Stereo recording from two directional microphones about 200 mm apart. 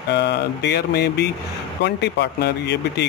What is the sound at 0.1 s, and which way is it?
Speech, 55° left (ahead or behind).